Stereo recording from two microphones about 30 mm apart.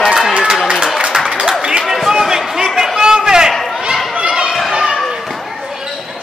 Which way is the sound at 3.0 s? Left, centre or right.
Right.